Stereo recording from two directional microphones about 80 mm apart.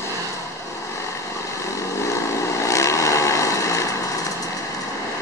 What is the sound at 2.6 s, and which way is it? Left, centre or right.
Vehicle, left.